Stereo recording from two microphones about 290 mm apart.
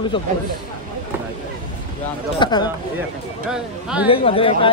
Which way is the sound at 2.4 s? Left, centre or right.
Centre.